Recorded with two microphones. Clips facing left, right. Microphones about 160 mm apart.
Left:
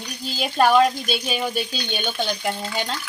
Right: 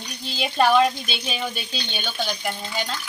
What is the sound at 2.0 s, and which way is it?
Speech, 20° left (ahead or behind).